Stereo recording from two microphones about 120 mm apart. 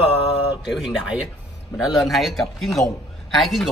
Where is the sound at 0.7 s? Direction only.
5° right (ahead or behind).